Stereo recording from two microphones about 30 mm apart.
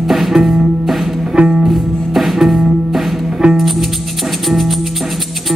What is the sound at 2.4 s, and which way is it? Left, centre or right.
Music, centre.